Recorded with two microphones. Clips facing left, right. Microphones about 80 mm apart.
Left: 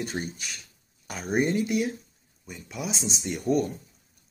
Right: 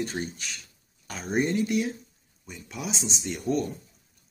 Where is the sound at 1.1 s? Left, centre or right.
Centre.